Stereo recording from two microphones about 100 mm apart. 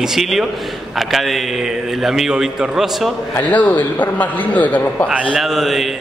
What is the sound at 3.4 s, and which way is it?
A man's voice, 15° left (ahead or behind).